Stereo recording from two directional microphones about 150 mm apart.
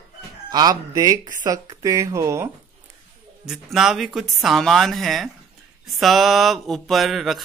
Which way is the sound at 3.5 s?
Centre (ahead or behind).